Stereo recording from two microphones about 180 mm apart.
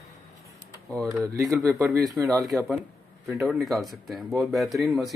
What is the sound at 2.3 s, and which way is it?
Speech, centre (ahead or behind).